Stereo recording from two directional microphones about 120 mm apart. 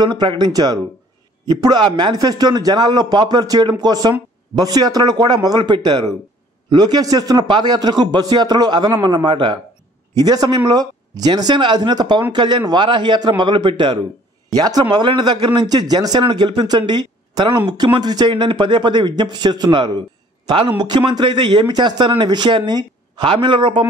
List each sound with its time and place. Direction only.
0.0 s a man's voice: 40° right (ahead or behind)